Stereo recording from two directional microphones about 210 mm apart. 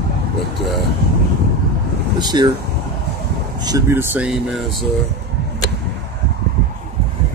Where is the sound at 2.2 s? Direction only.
20° right (ahead or behind).